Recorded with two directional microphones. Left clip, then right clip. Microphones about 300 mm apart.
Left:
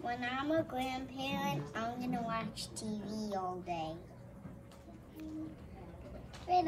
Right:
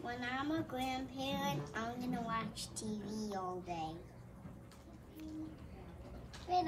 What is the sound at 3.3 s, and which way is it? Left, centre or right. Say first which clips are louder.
Speech: left 4 dB; centre.